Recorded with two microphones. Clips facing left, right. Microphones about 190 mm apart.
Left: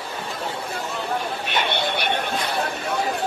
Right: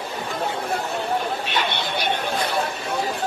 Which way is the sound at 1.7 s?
60° left (ahead or behind).